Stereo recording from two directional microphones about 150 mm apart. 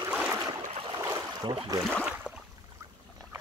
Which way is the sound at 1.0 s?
25° right (ahead or behind).